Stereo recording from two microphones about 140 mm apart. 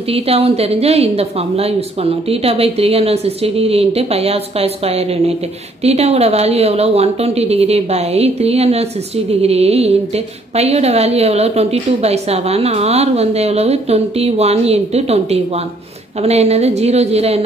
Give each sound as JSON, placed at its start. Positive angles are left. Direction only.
{"t": 0.1, "sound": "a woman's voice", "side_deg": -45}